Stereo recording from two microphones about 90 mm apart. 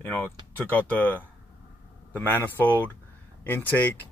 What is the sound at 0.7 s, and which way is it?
A man's voice, 20° left (ahead or behind).